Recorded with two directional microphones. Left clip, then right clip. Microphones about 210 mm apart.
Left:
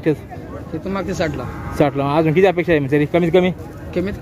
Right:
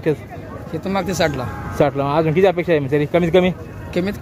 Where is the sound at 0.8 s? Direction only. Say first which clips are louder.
Right 3 dB; 50° right (ahead or behind).